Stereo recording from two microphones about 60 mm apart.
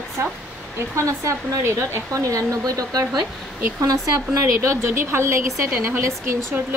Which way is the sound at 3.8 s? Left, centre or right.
Right.